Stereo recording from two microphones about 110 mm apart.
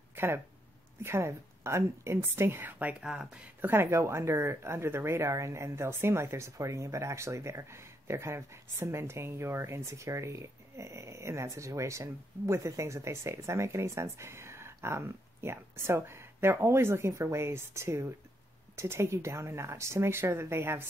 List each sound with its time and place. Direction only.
0.1 s a sound: 20° right (ahead or behind)
1.0 s speech: 25° right (ahead or behind); by 3.3 s 5° right (ahead or behind)
3.6 s speech: 20° right (ahead or behind)